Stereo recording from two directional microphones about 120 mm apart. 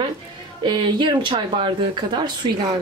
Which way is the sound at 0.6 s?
40° right (ahead or behind).